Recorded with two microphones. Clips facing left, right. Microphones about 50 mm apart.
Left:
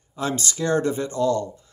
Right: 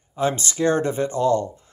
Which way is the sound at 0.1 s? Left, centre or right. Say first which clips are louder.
Right 3 dB; right.